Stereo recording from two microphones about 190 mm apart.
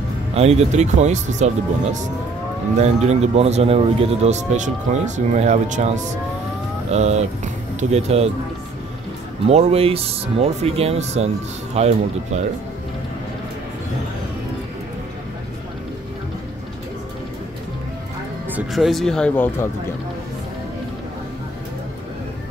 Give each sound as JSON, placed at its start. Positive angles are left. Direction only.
{"t": 0.3, "sound": "speech", "side_deg": -35}
{"t": 9.5, "sound": "speech", "side_deg": -35}
{"t": 18.5, "sound": "speech", "side_deg": -5}